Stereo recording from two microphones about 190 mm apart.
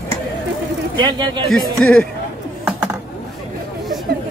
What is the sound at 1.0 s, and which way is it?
Speech, 20° right (ahead or behind).